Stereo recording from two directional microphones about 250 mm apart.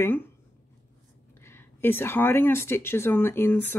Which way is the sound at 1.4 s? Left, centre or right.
Centre.